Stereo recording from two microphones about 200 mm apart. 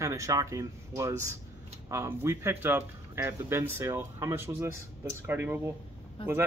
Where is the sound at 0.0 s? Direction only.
15° right (ahead or behind).